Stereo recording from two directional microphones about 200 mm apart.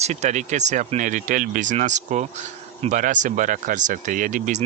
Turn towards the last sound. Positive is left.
turn(degrees=-40)  # may be behind; listen again after turning